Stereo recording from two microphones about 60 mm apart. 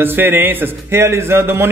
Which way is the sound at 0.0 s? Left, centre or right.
Right.